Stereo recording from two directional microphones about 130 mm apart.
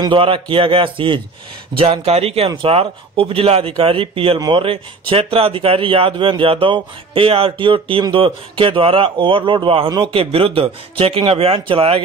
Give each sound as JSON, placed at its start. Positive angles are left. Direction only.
{"t": 0.0, "sound": "a man's voice", "side_deg": -40}
{"t": 9.8, "sound": "a man's voice", "side_deg": -30}
{"t": 10.1, "sound": "speech", "side_deg": -45}